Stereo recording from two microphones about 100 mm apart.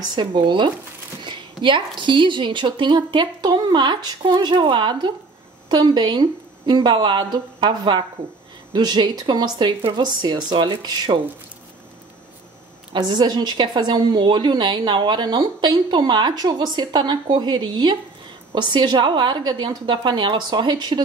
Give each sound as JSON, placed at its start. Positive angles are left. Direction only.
{"t": 0.1, "sound": "a woman's voice", "side_deg": -50}
{"t": 12.9, "sound": "a woman's voice", "side_deg": -45}